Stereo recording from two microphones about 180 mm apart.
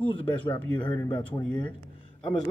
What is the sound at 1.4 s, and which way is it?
Speech, 25° left (ahead or behind).